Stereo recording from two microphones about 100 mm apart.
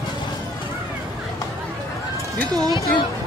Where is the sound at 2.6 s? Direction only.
35° right (ahead or behind).